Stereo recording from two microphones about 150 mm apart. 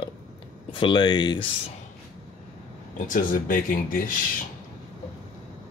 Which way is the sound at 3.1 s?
65° left (ahead or behind).